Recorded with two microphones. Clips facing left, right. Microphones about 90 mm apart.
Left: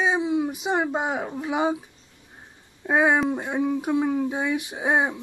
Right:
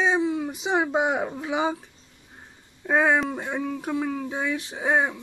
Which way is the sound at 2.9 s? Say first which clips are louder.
Left 1 dB; 10° left (ahead or behind).